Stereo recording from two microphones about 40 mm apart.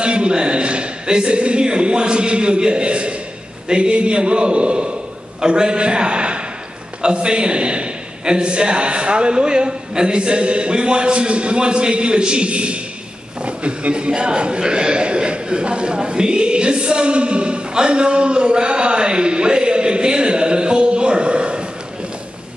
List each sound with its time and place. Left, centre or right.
0.0 s a man's voice: right